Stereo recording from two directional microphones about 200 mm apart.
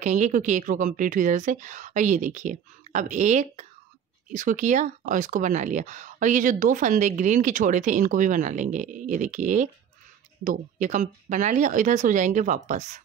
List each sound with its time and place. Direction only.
0.0 s speech: 35° right (ahead or behind)